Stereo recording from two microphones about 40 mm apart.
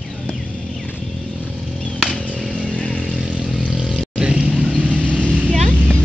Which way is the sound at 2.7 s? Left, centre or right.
Left.